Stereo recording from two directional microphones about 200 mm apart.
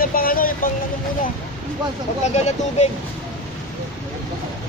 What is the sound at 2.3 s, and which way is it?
Speech, 35° left (ahead or behind).